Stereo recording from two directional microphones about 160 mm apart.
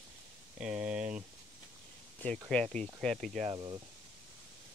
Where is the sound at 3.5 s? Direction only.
25° right (ahead or behind).